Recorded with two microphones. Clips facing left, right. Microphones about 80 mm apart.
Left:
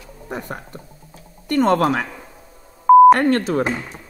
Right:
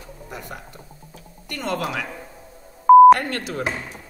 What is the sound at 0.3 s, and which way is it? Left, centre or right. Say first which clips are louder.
Speech: left 7 dB; left.